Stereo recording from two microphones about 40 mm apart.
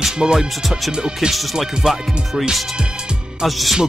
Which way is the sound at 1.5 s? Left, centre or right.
Centre.